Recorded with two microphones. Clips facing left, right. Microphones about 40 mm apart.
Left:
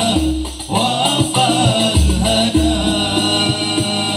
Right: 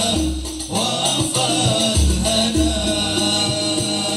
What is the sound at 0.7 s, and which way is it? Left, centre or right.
Music, left.